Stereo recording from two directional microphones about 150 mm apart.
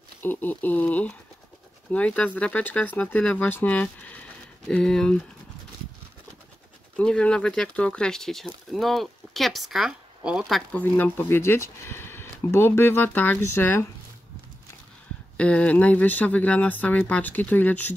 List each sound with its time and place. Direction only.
0.2 s speech: 15° left (ahead or behind)
7.0 s speech: 5° left (ahead or behind)
10.7 s speech: 10° left (ahead or behind)
15.3 s speech: 10° left (ahead or behind)